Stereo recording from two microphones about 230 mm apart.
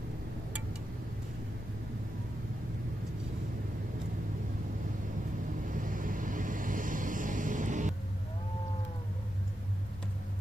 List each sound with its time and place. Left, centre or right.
5.7 s vehicle: right